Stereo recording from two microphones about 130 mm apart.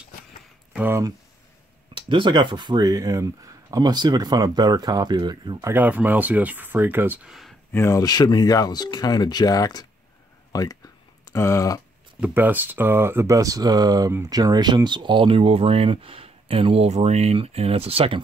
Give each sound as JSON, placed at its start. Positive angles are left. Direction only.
{"t": 0.7, "sound": "speech", "side_deg": -15}
{"t": 2.0, "sound": "speech", "side_deg": -40}
{"t": 5.6, "sound": "speech", "side_deg": -15}
{"t": 7.2, "sound": "a sound", "side_deg": 0}
{"t": 7.7, "sound": "speech", "side_deg": 20}
{"t": 10.5, "sound": "a sound", "side_deg": 30}
{"t": 12.2, "sound": "speech", "side_deg": -15}